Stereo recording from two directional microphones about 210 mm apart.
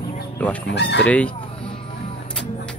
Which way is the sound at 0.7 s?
55° left (ahead or behind).